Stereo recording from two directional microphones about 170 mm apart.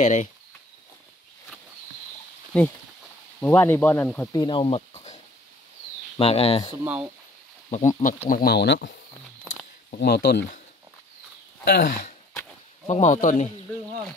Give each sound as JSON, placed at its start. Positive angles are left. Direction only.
{"t": 0.0, "sound": "speech", "side_deg": 45}
{"t": 2.5, "sound": "speech", "side_deg": 5}
{"t": 4.3, "sound": "speech", "side_deg": 25}
{"t": 6.8, "sound": "speech", "side_deg": -5}
{"t": 8.3, "sound": "speech", "side_deg": 65}
{"t": 9.9, "sound": "speech", "side_deg": 70}
{"t": 11.6, "sound": "speech", "side_deg": 60}
{"t": 12.8, "sound": "speech", "side_deg": 45}